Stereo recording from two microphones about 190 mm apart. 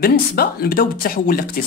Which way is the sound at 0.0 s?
55° left (ahead or behind).